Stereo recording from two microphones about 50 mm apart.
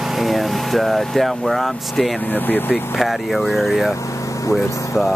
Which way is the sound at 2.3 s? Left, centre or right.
Left.